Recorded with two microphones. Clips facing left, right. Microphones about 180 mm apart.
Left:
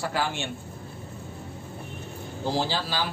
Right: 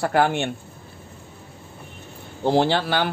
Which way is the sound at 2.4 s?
60° right (ahead or behind).